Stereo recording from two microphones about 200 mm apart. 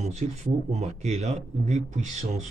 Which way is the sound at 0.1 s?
35° right (ahead or behind).